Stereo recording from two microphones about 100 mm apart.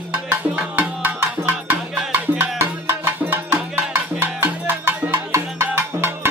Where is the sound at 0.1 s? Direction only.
15° right (ahead or behind).